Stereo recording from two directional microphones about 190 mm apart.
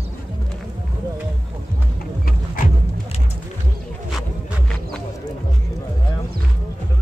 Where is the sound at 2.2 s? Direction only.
50° left (ahead or behind).